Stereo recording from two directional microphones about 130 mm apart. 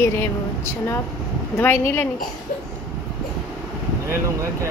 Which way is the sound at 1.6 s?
20° left (ahead or behind).